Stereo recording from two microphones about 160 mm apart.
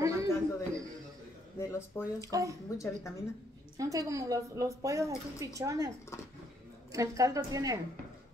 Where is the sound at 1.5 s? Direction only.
20° left (ahead or behind).